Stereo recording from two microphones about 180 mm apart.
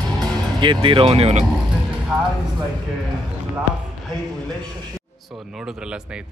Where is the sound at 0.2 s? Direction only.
25° right (ahead or behind).